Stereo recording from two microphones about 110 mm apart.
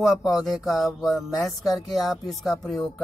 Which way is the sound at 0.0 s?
Centre (ahead or behind).